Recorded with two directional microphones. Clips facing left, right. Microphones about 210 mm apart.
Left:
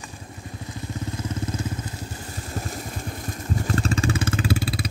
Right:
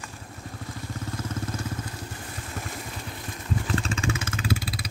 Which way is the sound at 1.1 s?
20° left (ahead or behind).